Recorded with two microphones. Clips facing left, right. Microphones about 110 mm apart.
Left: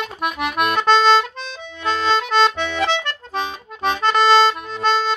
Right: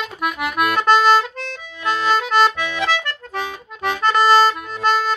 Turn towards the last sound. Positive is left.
turn(degrees=25)  # may be behind; listen again after turning